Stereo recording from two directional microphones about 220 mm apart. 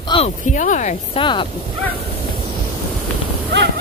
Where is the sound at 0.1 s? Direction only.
30° left (ahead or behind).